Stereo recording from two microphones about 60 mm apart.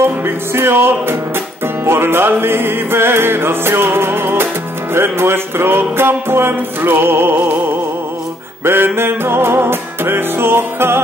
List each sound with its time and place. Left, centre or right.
0.0 s music: right
8.6 s music: right